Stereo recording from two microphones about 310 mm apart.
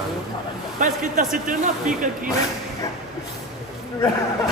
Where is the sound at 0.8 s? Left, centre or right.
Right.